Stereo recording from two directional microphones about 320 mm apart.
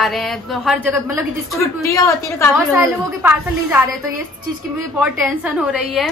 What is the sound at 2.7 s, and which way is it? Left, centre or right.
A woman's voice, centre.